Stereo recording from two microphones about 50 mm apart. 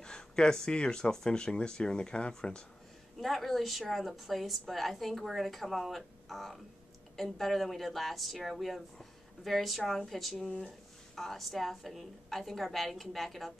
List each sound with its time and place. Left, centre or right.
0.0 s speech: centre
3.2 s a woman's voice: centre